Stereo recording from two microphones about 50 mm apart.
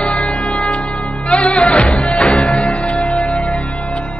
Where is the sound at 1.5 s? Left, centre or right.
Centre.